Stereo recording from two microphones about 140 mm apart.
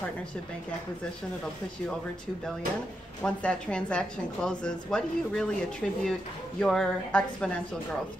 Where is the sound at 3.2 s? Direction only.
5° left (ahead or behind).